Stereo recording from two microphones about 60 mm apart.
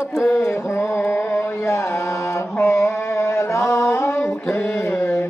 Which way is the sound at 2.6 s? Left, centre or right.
Left.